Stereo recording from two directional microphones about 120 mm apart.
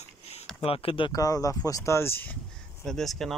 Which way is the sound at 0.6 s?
50° left (ahead or behind).